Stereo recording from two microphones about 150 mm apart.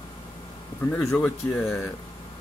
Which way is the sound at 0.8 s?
10° left (ahead or behind).